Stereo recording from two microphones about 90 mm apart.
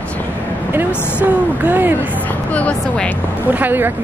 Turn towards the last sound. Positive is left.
turn(degrees=-20)  # may be behind; listen again after turning